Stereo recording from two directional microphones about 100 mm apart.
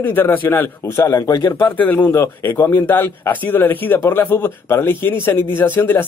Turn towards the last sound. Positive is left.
turn(degrees=20)  # may be behind; listen again after turning